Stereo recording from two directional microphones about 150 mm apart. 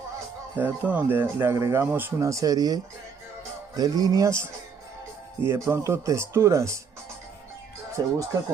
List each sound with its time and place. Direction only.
0.6 s speech: 10° right (ahead or behind)
8.0 s speech: 30° right (ahead or behind)